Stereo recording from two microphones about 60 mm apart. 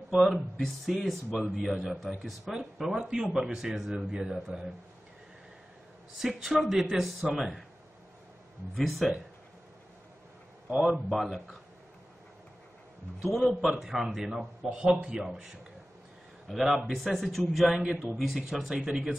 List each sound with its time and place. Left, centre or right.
0.1 s a man's voice: centre
6.1 s a man's voice: centre
8.7 s a man's voice: centre
10.7 s a man's voice: centre
13.2 s a man's voice: centre
14.7 s a man's voice: right